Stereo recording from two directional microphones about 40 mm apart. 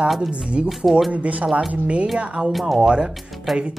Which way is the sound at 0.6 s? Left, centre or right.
Right.